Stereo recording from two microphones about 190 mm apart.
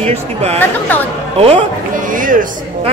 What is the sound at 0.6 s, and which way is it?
Speech, 10° left (ahead or behind).